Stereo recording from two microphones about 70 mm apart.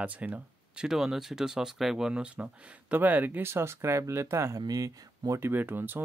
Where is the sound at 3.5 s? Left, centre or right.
Right.